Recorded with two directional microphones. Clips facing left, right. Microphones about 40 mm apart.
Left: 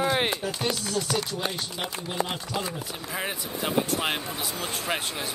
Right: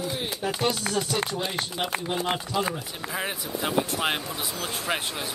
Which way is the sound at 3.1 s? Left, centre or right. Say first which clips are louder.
Right 1 dB; centre.